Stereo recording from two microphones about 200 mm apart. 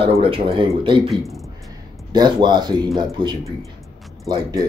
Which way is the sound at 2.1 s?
20° right (ahead or behind).